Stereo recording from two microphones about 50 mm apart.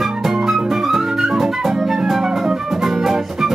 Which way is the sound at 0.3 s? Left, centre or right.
Centre.